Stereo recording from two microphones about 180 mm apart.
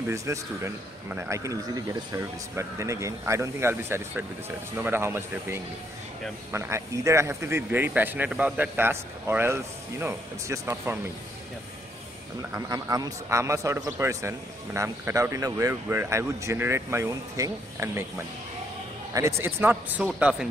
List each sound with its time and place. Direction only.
0.1 s a man's voice: 15° right (ahead or behind)
12.4 s a man's voice: 20° right (ahead or behind)
19.1 s a man's voice: 15° right (ahead or behind)